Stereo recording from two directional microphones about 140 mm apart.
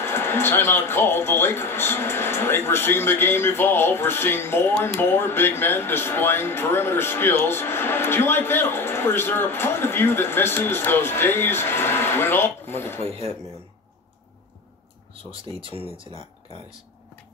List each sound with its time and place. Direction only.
0.0 s speech: 15° left (ahead or behind)
13.0 s speech: 45° right (ahead or behind)
15.6 s speech: 40° right (ahead or behind)